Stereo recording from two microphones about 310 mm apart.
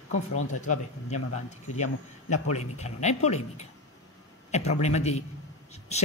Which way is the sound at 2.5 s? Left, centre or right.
Left.